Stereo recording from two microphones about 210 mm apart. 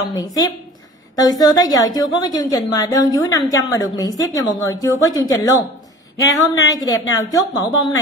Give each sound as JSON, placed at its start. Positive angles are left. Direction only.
{"t": 0.1, "sound": "a woman's voice", "side_deg": 20}